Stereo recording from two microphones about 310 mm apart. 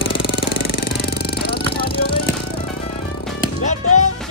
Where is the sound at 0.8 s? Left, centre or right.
Left.